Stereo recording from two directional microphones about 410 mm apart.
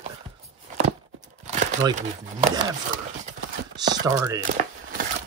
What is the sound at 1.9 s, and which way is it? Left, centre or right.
Speech, centre.